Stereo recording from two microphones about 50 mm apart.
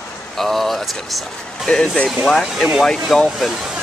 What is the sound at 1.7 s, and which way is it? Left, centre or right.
Speech, centre.